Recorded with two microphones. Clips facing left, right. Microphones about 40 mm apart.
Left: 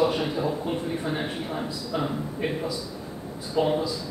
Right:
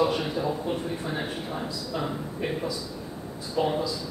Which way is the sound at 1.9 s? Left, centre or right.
Left.